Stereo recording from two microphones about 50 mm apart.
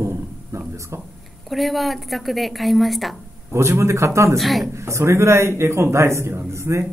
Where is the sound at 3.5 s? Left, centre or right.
Right.